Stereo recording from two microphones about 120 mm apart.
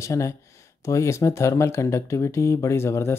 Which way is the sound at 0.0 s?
25° left (ahead or behind).